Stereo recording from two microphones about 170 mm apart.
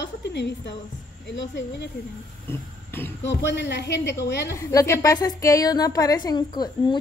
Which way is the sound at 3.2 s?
90° left.